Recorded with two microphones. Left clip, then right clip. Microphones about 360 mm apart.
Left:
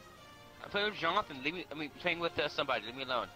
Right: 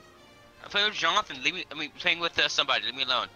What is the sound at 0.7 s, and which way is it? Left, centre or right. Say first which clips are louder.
A man's voice: right 8 dB; right.